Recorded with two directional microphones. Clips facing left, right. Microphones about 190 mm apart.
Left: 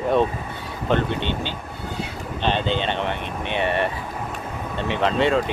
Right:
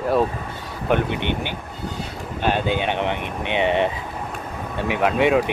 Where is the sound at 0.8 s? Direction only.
15° right (ahead or behind).